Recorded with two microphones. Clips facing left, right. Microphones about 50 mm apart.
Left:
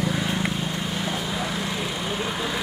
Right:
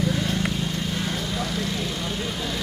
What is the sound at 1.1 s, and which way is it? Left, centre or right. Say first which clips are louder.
Vehicle: even; centre.